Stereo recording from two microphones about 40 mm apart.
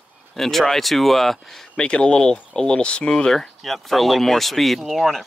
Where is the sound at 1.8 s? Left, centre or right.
Left.